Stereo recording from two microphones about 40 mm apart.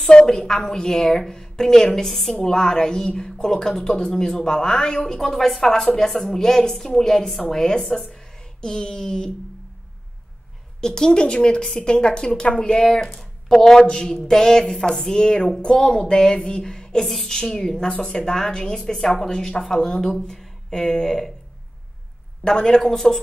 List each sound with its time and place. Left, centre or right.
0.1 s a woman's voice: centre
5.2 s a woman's voice: centre
10.8 s a woman's voice: centre
13.2 s a woman's voice: centre
22.4 s a woman's voice: centre